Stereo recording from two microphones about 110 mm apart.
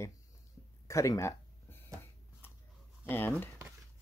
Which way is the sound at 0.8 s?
30° left (ahead or behind).